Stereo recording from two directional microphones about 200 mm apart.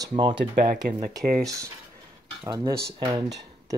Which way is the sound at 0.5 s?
45° right (ahead or behind).